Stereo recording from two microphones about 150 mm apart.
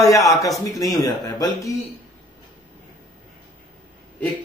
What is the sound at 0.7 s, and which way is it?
Speech, 25° left (ahead or behind).